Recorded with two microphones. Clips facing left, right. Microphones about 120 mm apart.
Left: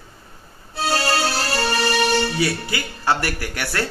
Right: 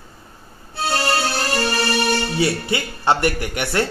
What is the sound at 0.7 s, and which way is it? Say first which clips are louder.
Music: even; 35° left (ahead or behind).